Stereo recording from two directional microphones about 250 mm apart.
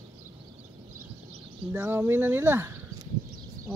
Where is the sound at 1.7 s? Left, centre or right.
Centre.